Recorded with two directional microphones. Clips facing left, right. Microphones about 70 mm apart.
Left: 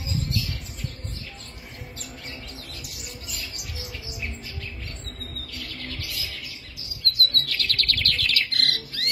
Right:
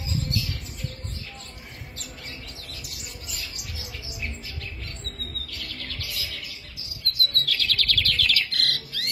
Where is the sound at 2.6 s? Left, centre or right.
Centre.